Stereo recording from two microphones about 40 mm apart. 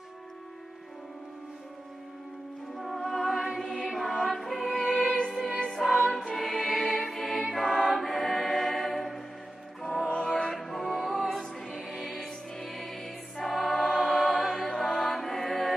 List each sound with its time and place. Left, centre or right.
2.8 s music: centre
5.1 s music: centre
5.7 s music: centre
10.0 s music: left
10.3 s music: centre
14.7 s music: centre
15.0 s music: centre